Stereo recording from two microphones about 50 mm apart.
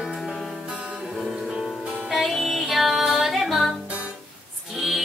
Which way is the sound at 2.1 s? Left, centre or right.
Centre.